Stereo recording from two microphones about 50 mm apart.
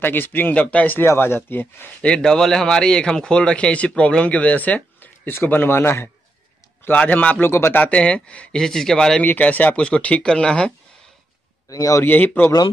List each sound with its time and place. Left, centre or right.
0.0 s speech: left
0.6 s speech: left
1.0 s speech: left
2.0 s speech: left
2.2 s speech: centre; by 5.1 s left
5.2 s speech: left
7.1 s speech: left
7.4 s speech: left
7.9 s speech: left
8.5 s speech: centre
9.2 s speech: left
9.8 s speech: left
12.0 s speech: left